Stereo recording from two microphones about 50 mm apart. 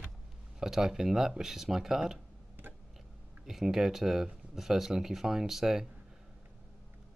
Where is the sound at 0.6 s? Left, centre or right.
Centre.